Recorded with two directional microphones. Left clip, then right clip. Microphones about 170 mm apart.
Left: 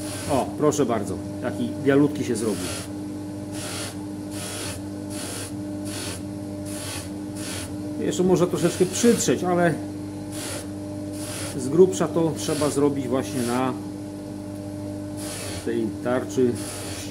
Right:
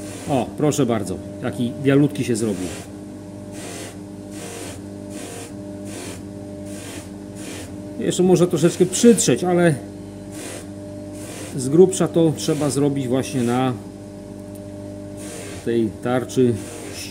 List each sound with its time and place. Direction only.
0.6 s a man's voice: 90° right
8.0 s a man's voice: 90° right
11.7 s a man's voice: 90° right
15.7 s a man's voice: 90° right